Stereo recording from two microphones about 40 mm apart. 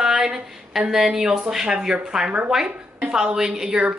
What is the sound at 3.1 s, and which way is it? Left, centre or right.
Speech, centre.